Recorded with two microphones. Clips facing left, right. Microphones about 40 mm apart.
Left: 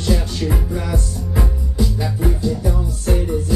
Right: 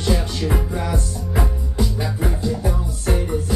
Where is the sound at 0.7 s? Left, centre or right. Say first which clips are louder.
Left 1 dB; centre.